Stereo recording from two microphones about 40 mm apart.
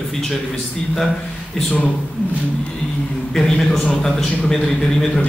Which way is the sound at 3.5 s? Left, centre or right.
Centre.